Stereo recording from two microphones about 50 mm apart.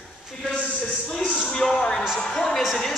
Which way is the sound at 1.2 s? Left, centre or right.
Left.